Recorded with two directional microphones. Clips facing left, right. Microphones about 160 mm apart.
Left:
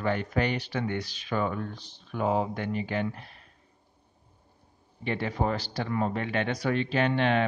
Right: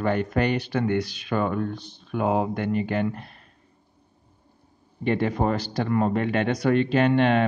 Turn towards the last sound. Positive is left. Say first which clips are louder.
# right 5 dB
turn(degrees=-45)  # may be behind; listen again after turning